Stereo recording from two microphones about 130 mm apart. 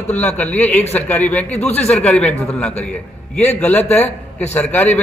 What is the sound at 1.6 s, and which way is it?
Speech, 55° left (ahead or behind).